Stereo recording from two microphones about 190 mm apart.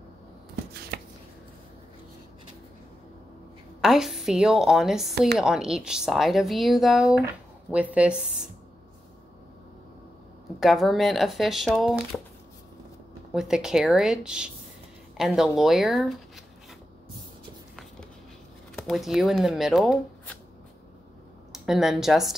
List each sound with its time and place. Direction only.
0.9 s chopping: 55° right (ahead or behind)
3.8 s a woman's voice: centre (ahead or behind)
10.6 s a woman's voice: centre (ahead or behind)
13.3 s a woman's voice: 5° right (ahead or behind)
18.8 s a woman's voice: centre (ahead or behind)
21.5 s speech: centre (ahead or behind)